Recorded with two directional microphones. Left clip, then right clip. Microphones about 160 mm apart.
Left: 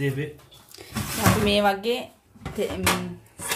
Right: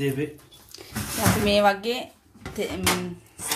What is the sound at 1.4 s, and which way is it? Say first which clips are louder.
Speech: right 4 dB; 10° right (ahead or behind).